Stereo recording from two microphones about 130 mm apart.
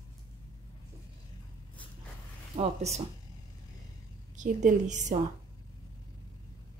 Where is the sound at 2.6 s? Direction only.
55° right (ahead or behind).